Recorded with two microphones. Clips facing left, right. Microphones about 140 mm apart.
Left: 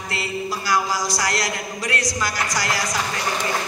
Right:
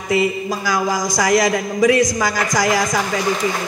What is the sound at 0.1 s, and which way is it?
A man's voice, 90° right.